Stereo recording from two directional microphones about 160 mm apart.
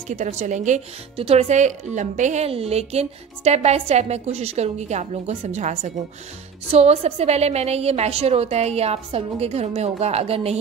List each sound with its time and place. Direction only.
0.1 s a woman's voice: 50° right (ahead or behind)
1.1 s a woman's voice: 40° right (ahead or behind)